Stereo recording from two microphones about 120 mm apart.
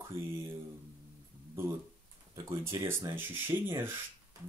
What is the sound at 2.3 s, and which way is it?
Speech, 20° right (ahead or behind).